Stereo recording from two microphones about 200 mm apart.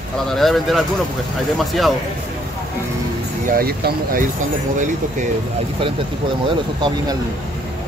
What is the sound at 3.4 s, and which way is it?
Speech, 50° right (ahead or behind).